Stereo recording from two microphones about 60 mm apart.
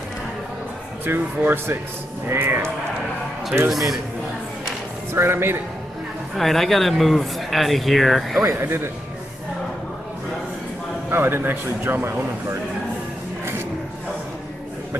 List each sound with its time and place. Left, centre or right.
1.0 s speech: right
3.7 s speech: centre
5.1 s speech: right
6.3 s speech: centre
8.5 s speech: right
11.1 s speech: right